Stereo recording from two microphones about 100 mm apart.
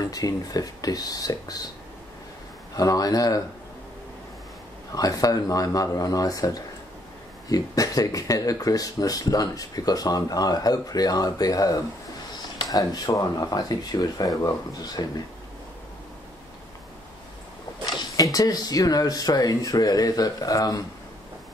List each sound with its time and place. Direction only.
0.1 s speech: 35° left (ahead or behind)
2.7 s speech: 40° left (ahead or behind)
4.9 s speech: 35° left (ahead or behind)
18.1 s speech: 40° left (ahead or behind)